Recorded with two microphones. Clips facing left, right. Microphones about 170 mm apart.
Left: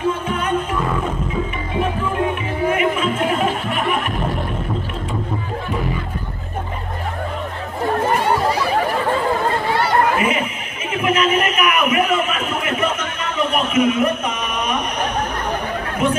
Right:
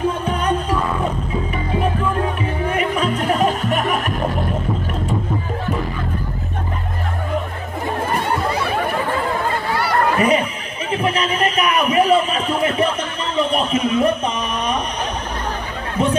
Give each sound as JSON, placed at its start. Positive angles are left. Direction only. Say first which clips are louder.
{"t": 0.2, "sound": "music", "louder": "right 1 dB", "side_deg": -35}
{"t": 2.7, "sound": "music", "louder": "left 1 dB", "side_deg": -35}
{"t": 9.7, "sound": "snicker", "louder": "left 2 dB", "side_deg": 20}
{"t": 10.1, "sound": "a sound", "louder": "right 3 dB", "side_deg": -35}
{"t": 16.0, "sound": "chatter", "louder": "even", "side_deg": -30}